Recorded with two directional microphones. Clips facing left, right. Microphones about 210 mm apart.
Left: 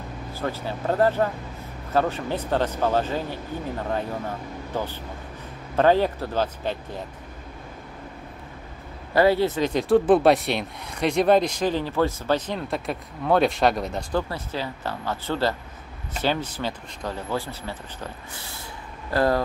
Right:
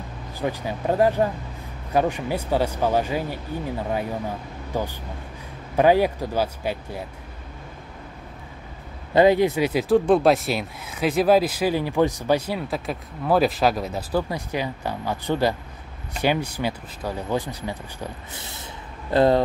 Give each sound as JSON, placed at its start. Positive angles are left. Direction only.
{"t": 0.3, "sound": "speech", "side_deg": -15}
{"t": 9.1, "sound": "speech", "side_deg": -20}